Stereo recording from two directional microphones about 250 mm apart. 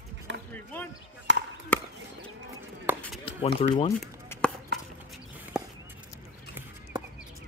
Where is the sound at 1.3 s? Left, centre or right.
Right.